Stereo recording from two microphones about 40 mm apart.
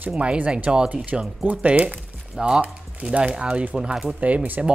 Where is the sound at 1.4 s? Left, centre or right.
Right.